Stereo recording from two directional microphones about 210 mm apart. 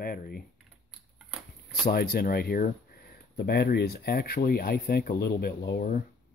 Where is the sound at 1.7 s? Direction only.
45° left (ahead or behind).